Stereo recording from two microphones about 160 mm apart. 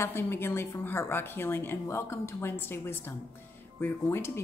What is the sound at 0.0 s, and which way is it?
Speech, 15° left (ahead or behind).